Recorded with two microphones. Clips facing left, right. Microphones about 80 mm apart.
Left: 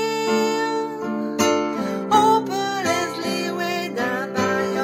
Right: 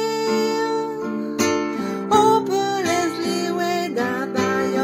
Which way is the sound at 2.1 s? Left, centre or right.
Right.